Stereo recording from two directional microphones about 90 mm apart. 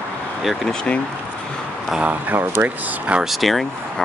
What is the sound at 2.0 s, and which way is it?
Speech, 20° right (ahead or behind).